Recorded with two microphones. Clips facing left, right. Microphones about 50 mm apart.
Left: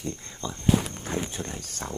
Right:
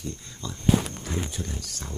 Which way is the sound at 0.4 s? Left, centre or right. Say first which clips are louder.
Even; left.